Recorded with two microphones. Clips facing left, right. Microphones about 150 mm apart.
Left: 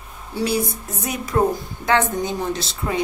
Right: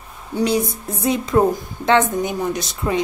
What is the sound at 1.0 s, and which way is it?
A woman's voice, 25° right (ahead or behind).